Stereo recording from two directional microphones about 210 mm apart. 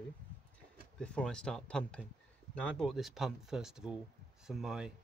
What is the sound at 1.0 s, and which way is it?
Speech, 5° left (ahead or behind).